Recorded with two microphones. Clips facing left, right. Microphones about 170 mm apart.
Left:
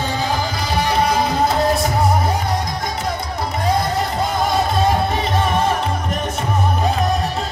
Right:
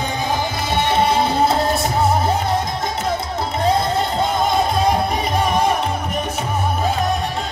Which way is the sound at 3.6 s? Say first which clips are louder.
Right 1 dB; 25° right (ahead or behind).